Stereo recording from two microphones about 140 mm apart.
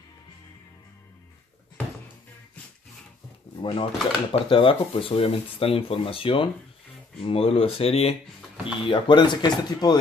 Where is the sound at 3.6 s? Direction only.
40° left (ahead or behind).